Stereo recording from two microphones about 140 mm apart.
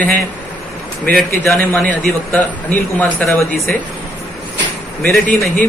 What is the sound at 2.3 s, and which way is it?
A man's voice, 10° left (ahead or behind).